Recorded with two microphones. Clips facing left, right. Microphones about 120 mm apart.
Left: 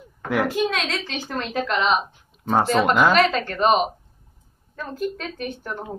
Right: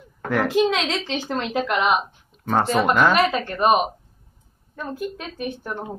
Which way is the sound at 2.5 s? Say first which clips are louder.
Left 1 dB; centre (ahead or behind).